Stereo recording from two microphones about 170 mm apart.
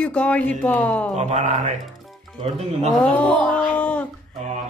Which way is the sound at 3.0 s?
5° left (ahead or behind).